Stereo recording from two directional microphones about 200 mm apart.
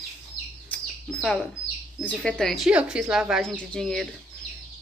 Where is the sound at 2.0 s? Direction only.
5° left (ahead or behind).